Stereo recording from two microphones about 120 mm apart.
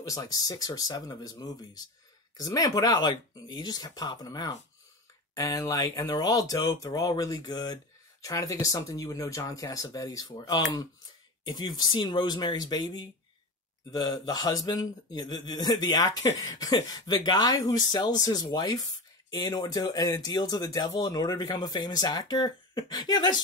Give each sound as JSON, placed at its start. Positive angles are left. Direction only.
{"t": 0.0, "sound": "speech", "side_deg": 30}